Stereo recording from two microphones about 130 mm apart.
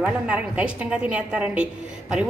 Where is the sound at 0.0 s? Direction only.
10° right (ahead or behind).